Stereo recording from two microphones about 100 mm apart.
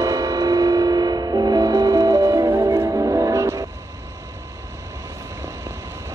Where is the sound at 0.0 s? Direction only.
40° right (ahead or behind).